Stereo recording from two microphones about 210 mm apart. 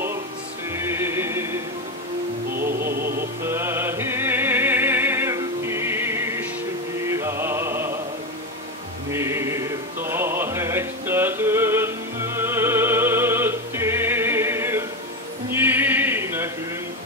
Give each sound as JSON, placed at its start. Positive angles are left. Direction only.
{"t": 0.7, "sound": "music", "side_deg": -10}
{"t": 2.5, "sound": "music", "side_deg": -45}
{"t": 3.4, "sound": "music", "side_deg": -10}
{"t": 9.1, "sound": "music", "side_deg": -10}
{"t": 15.5, "sound": "a sound", "side_deg": -10}